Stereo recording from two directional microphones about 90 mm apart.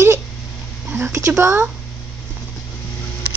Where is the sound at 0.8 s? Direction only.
25° right (ahead or behind).